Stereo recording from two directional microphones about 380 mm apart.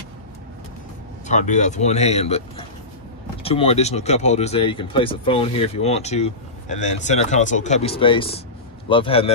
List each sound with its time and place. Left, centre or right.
1.2 s speech: centre